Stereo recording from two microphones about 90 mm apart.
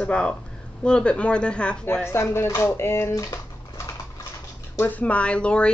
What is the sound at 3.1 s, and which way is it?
Typewriter, 35° left (ahead or behind).